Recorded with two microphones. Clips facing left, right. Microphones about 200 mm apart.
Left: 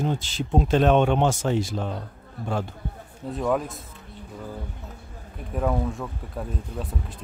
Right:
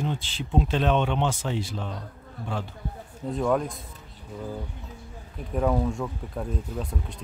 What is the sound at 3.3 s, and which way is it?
Speech, centre (ahead or behind).